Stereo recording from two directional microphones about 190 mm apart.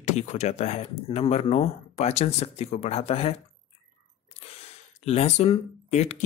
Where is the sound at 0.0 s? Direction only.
40° left (ahead or behind).